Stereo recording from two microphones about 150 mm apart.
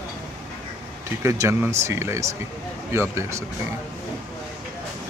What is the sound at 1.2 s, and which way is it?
Speech, 20° right (ahead or behind).